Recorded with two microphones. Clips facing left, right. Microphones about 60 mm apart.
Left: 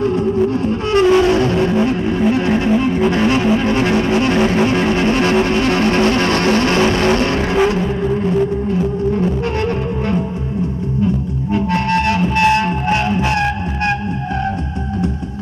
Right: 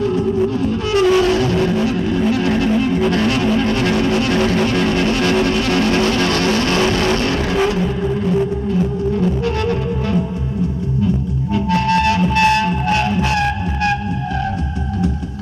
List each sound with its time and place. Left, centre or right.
0.7 s music: left
1.1 s music: centre; by 5.9 s left
6.0 s vehicle: left
6.8 s vehicle: centre
11.5 s music: left
12.6 s music: centre